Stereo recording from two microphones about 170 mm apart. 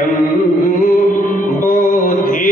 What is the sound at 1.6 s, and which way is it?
Music, 60° left (ahead or behind).